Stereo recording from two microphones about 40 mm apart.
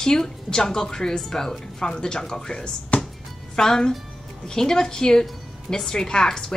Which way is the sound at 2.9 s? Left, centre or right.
Left.